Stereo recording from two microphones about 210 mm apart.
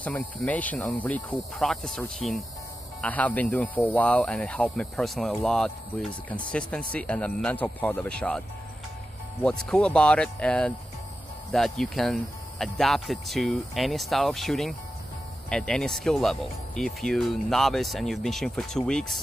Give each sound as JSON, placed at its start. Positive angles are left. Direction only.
{"t": 0.0, "sound": "speech", "side_deg": 5}
{"t": 9.7, "sound": "speech", "side_deg": 5}